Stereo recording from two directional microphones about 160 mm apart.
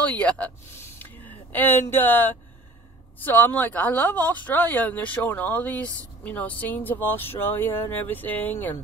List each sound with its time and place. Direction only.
0.2 s speech: 10° left (ahead or behind)